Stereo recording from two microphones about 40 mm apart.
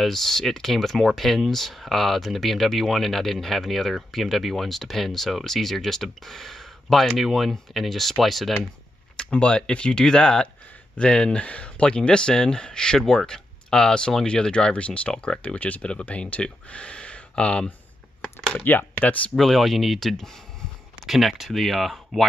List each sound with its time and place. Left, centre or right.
0.0 s speech: centre
9.1 s speech: left
15.4 s speech: left
16.4 s speech: left
18.6 s speech: left
19.3 s speech: centre